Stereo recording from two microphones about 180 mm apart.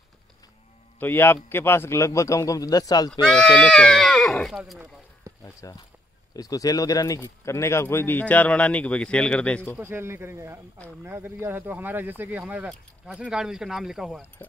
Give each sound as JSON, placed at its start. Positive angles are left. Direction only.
{"t": 0.9, "sound": "speech", "side_deg": 10}
{"t": 3.1, "sound": "speech", "side_deg": 0}
{"t": 5.4, "sound": "speech", "side_deg": 15}
{"t": 9.8, "sound": "speech", "side_deg": -10}